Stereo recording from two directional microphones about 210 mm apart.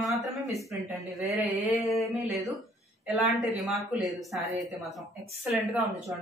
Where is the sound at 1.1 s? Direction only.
Centre (ahead or behind).